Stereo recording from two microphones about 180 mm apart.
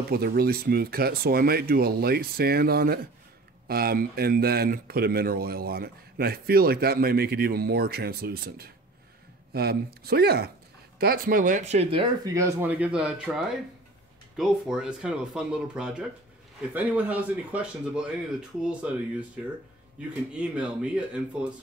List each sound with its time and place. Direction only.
0.1 s speech: 60° right (ahead or behind); by 12.1 s 30° right (ahead or behind)
12.3 s speech: 15° right (ahead or behind)
20.3 s speech: 5° right (ahead or behind)